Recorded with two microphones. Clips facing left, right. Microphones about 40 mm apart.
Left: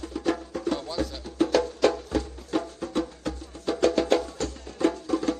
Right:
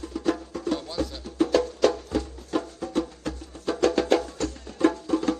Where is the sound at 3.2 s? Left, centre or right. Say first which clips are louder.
Even; right.